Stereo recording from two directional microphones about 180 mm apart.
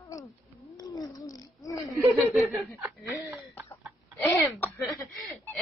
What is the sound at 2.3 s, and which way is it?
Chuckle, centre (ahead or behind).